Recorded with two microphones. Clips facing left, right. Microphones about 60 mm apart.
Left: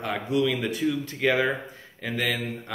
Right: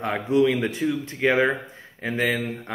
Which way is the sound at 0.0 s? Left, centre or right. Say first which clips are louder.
Right 5 dB; right.